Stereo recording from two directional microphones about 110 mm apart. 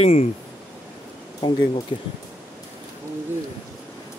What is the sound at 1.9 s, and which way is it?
Speech, 50° left (ahead or behind).